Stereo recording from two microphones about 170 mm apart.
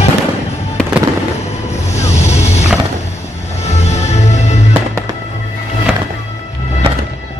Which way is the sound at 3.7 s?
40° left (ahead or behind).